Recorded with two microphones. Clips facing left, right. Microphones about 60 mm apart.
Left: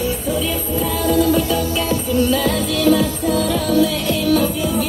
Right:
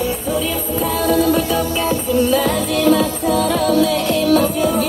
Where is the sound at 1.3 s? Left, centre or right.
Right.